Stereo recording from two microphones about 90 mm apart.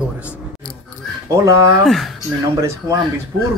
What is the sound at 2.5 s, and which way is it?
Speech, 35° right (ahead or behind).